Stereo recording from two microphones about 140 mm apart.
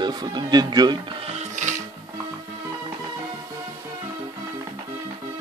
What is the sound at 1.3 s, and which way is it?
Music, 60° right (ahead or behind).